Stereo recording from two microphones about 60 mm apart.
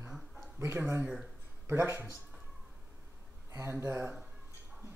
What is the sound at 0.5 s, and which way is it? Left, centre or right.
Speech, right.